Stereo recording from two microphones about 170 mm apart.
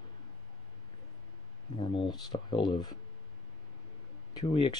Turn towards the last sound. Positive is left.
turn(degrees=30)  # may be behind; listen again after turning